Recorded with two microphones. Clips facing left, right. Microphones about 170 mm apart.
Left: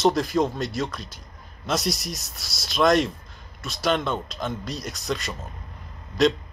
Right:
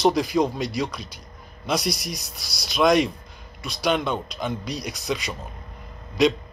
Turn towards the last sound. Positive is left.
turn(degrees=0)  # may be behind; listen again after turning